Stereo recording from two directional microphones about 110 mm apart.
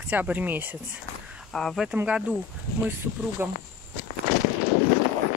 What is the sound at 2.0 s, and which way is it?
Speech, 10° right (ahead or behind).